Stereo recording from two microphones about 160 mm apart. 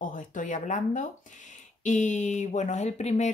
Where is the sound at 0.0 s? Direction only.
55° left (ahead or behind).